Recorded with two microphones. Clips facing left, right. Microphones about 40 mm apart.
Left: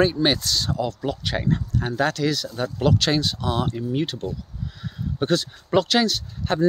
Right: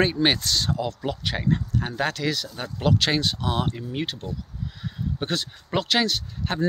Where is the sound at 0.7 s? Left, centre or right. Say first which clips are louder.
Left 2 dB; right.